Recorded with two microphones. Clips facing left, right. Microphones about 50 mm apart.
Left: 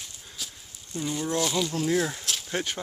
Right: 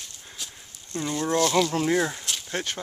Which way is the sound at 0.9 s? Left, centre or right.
Centre.